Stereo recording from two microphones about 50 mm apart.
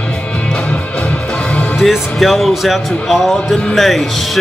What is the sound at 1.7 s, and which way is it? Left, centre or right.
Speech, centre.